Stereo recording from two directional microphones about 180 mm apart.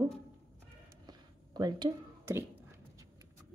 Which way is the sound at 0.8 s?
20° right (ahead or behind).